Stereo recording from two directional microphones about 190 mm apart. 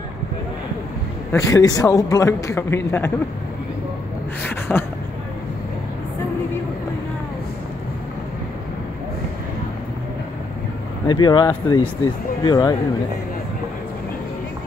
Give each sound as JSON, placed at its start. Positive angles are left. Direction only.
{"t": 1.3, "sound": "a man's voice", "side_deg": 15}
{"t": 4.4, "sound": "a sound", "side_deg": 10}
{"t": 11.1, "sound": "speech", "side_deg": 25}